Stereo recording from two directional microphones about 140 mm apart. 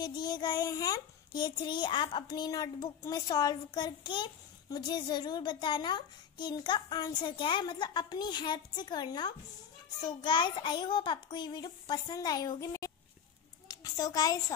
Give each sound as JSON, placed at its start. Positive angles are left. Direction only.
{"t": 0.0, "sound": "a child's voice", "side_deg": 30}